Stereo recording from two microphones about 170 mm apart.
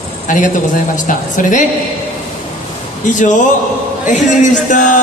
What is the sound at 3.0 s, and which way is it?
Speech, 45° left (ahead or behind).